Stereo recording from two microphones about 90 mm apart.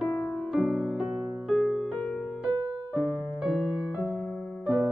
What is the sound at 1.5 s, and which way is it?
Music, 5° left (ahead or behind).